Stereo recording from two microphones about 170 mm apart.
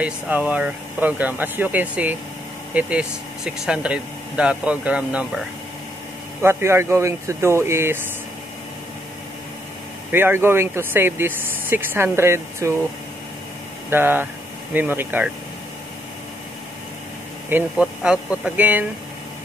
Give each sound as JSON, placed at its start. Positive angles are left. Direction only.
{"t": 0.0, "sound": "speech", "side_deg": -10}
{"t": 6.4, "sound": "speech", "side_deg": -15}
{"t": 10.1, "sound": "speech", "side_deg": -15}
{"t": 13.8, "sound": "speech", "side_deg": -10}
{"t": 17.5, "sound": "speech", "side_deg": -10}